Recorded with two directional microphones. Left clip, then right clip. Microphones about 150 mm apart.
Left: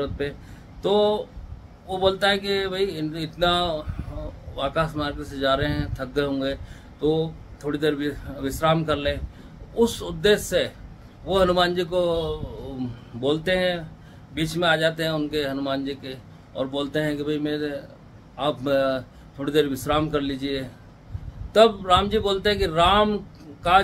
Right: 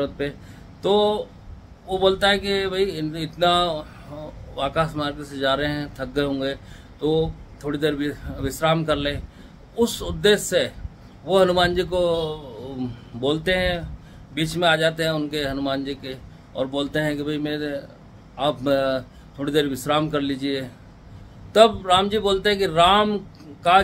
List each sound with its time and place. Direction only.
0.2 s speech: 10° right (ahead or behind)